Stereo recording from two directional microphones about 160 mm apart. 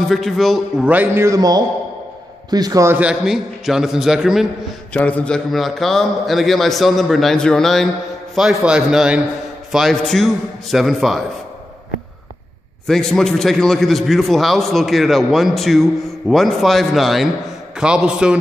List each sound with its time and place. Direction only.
0.1 s a man's voice: centre (ahead or behind)
0.8 s a man's voice: 15° right (ahead or behind)
4.9 s a man's voice: 10° left (ahead or behind)
12.8 s a man's voice: 5° left (ahead or behind)